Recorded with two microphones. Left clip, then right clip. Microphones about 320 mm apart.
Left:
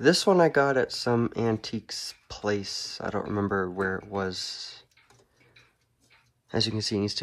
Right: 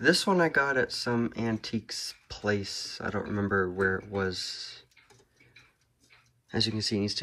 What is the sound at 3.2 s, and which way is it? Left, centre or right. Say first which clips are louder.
Speech: even; left.